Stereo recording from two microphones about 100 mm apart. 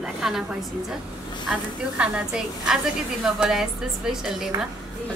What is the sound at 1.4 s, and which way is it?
A woman's voice, 10° right (ahead or behind).